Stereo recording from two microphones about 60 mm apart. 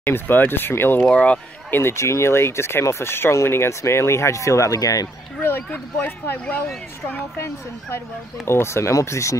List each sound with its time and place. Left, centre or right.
0.1 s speech: left
1.0 s speech: left
1.7 s speech: left
5.4 s speech: left
8.5 s speech: left